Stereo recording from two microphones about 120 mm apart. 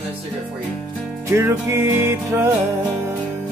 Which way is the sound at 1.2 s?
25° right (ahead or behind).